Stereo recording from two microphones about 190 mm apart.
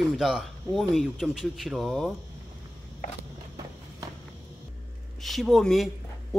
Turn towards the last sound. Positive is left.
turn(degrees=0)  # may be behind; listen again after turning